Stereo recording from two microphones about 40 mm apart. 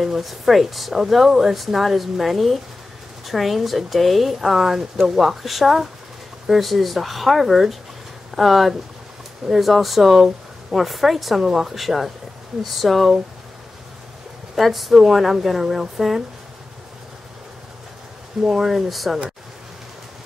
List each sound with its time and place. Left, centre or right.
0.0 s speech: centre
14.5 s speech: centre
15.6 s speech: centre
18.5 s speech: centre